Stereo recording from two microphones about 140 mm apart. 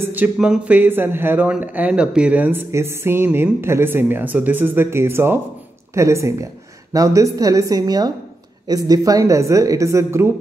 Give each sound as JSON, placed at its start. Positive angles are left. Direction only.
{"t": 0.0, "sound": "speech", "side_deg": -10}